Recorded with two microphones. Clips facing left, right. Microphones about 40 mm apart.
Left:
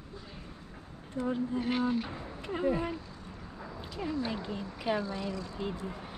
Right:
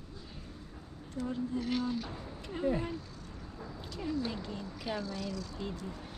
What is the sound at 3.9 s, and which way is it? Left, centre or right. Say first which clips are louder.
Speech: left 2 dB; left.